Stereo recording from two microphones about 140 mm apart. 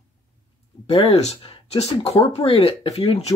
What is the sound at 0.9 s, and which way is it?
Speech, 50° left (ahead or behind).